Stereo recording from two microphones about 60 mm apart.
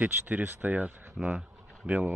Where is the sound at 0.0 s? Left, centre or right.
Right.